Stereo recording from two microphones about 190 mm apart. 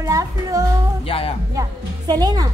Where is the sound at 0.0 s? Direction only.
15° right (ahead or behind).